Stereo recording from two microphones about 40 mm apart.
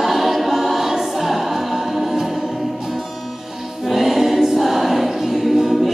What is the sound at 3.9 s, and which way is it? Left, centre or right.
Choir, centre.